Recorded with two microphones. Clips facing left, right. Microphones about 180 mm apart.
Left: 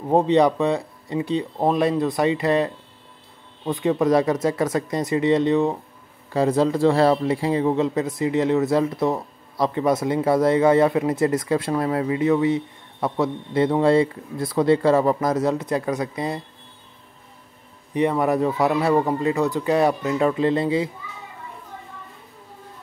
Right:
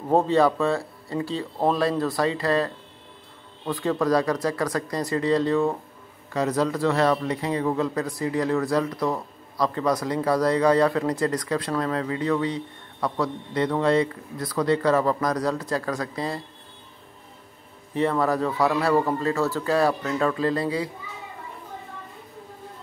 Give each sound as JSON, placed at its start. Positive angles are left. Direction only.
{"t": 0.1, "sound": "speech", "side_deg": 15}
{"t": 17.9, "sound": "speech", "side_deg": 15}